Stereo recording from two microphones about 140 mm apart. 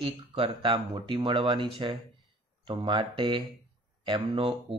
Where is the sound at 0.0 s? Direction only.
40° right (ahead or behind).